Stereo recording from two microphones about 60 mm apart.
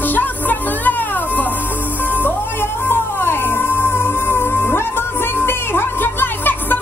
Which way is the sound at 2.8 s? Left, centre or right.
Left.